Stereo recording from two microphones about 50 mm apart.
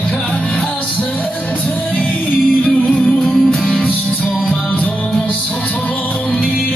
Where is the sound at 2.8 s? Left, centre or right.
Left.